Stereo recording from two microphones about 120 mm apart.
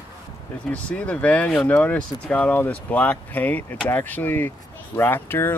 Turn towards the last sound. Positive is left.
turn(degrees=20)  # may be behind; listen again after turning